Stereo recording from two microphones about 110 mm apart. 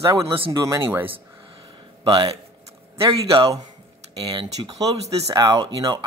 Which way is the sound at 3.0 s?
55° right (ahead or behind).